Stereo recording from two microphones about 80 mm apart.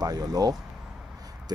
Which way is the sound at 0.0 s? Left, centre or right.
Right.